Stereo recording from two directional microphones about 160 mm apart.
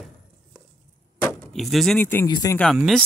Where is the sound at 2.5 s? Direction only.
Centre (ahead or behind).